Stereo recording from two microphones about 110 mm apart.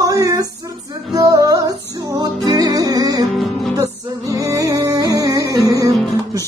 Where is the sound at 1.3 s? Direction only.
35° right (ahead or behind).